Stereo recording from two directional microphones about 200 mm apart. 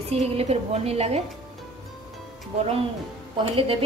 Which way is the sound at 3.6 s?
25° right (ahead or behind).